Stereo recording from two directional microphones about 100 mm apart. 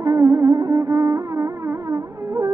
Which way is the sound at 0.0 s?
30° right (ahead or behind).